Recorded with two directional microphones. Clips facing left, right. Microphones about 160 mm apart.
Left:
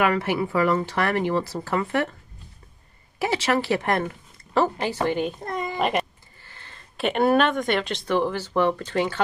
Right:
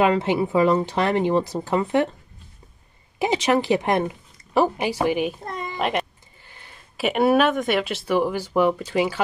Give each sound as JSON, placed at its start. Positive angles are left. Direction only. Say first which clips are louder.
{"t": 0.0, "sound": "speech", "louder": "right 3 dB", "side_deg": -20}
{"t": 3.2, "sound": "speech", "louder": "right 3 dB", "side_deg": -20}
{"t": 6.4, "sound": "speech", "louder": "even", "side_deg": -15}